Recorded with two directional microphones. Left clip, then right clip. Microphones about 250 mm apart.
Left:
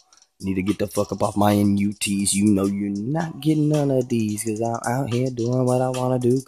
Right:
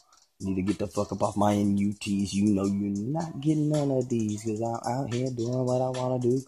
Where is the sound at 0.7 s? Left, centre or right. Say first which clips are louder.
Left 6 dB; left.